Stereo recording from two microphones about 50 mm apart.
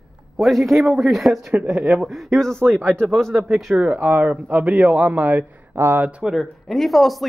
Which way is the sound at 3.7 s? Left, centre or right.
Right.